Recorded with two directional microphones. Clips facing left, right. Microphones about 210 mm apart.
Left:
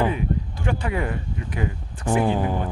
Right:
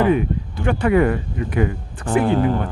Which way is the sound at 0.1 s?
65° right (ahead or behind).